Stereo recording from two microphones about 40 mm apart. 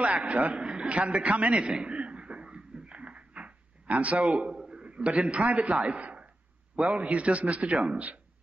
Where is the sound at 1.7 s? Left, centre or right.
Right.